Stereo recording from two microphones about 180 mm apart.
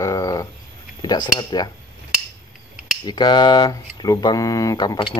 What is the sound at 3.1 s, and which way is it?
Speech, 25° left (ahead or behind).